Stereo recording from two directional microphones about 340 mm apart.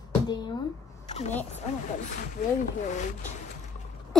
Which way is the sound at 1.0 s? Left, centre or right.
Centre.